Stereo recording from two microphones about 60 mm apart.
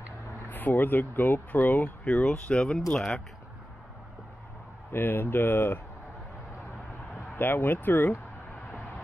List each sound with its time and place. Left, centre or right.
0.5 s speech: left
2.0 s speech: centre
4.9 s speech: left
7.3 s speech: left